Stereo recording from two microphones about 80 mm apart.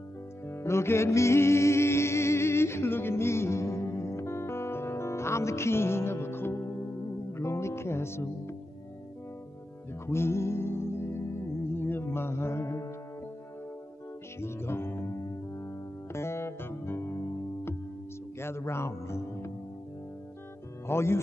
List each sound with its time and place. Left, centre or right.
0.5 s music: left
10.0 s music: left
14.4 s music: left
16.1 s music: left
18.4 s music: left
20.8 s speech: left